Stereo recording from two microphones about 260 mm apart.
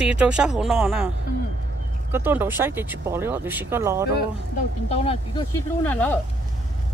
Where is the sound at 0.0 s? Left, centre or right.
Centre.